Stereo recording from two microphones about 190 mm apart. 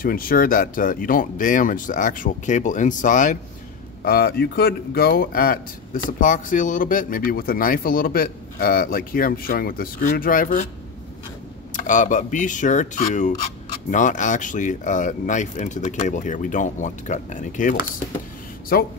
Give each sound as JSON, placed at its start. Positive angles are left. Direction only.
{"t": 0.0, "sound": "speech", "side_deg": 50}
{"t": 4.0, "sound": "speech", "side_deg": 55}
{"t": 11.7, "sound": "cutlery", "side_deg": 45}
{"t": 18.7, "sound": "speech", "side_deg": 55}